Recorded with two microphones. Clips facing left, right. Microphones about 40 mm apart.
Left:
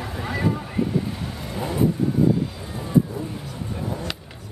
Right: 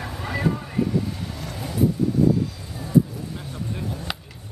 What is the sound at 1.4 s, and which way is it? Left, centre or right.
Vehicle, left.